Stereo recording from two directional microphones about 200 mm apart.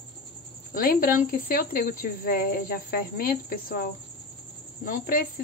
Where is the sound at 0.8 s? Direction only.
45° left (ahead or behind).